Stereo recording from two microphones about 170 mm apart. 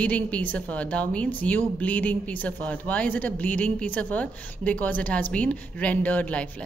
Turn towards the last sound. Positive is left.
turn(degrees=10)  # may be behind; listen again after turning